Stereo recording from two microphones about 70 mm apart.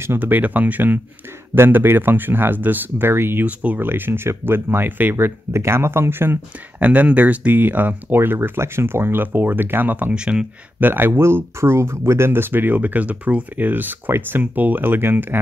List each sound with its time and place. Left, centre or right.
0.0 s speech: right
5.1 s speech: right
6.9 s speech: right
10.1 s speech: centre
10.8 s speech: right